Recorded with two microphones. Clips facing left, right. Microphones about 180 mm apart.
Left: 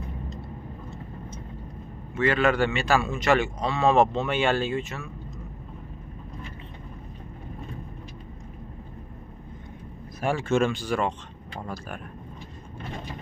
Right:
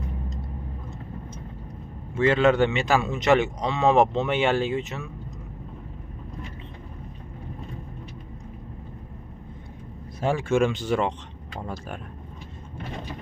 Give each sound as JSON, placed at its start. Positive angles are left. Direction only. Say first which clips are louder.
{"t": 2.1, "sound": "a man's voice", "louder": "right 3 dB", "side_deg": -25}
{"t": 10.2, "sound": "a man's voice", "louder": "right 1 dB", "side_deg": -15}